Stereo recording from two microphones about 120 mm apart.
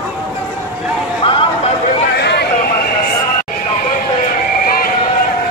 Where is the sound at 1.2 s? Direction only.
45° left (ahead or behind).